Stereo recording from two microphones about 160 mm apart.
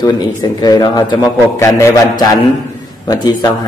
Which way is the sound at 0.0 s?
25° left (ahead or behind).